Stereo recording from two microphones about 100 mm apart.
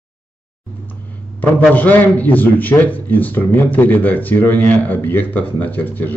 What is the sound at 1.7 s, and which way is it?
A man's voice, 15° left (ahead or behind).